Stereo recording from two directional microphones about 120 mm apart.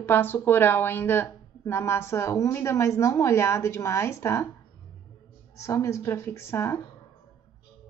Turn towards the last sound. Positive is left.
turn(degrees=20)  # may be behind; listen again after turning